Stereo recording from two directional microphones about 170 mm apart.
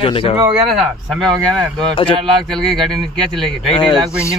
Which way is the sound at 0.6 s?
Centre (ahead or behind).